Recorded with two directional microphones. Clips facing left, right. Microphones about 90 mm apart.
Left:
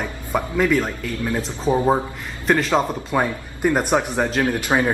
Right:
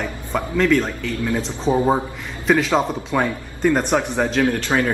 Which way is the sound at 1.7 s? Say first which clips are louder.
Right 1 dB; 25° right (ahead or behind).